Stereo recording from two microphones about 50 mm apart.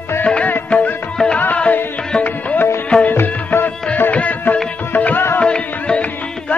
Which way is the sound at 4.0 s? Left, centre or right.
Left.